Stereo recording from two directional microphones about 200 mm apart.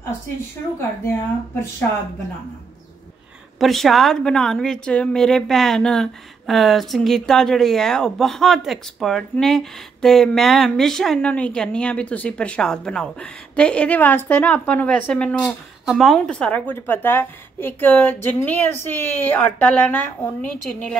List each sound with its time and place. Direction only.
3.5 s a woman's voice: centre (ahead or behind)